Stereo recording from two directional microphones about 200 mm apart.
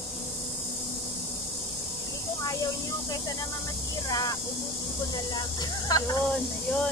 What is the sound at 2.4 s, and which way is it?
Speech, 20° left (ahead or behind).